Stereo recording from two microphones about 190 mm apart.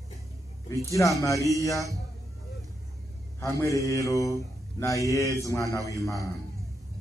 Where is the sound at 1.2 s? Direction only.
15° left (ahead or behind).